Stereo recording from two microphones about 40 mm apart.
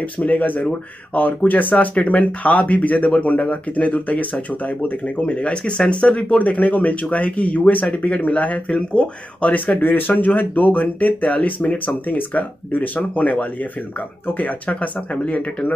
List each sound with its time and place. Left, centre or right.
0.2 s speech: left
9.5 s speech: left